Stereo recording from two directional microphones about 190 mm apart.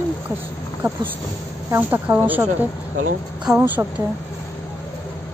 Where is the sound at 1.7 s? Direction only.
10° right (ahead or behind).